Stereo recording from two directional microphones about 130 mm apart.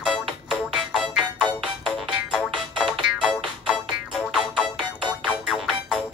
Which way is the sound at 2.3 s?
5° right (ahead or behind).